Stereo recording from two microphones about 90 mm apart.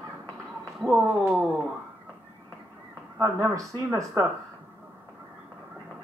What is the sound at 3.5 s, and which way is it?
Speech, 35° right (ahead or behind).